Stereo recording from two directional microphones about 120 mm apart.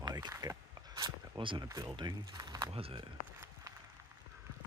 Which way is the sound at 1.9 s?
35° right (ahead or behind).